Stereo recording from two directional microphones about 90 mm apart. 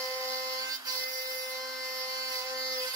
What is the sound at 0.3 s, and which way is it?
Wood, 40° right (ahead or behind).